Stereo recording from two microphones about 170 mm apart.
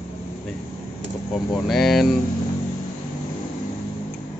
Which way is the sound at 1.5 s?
Centre (ahead or behind).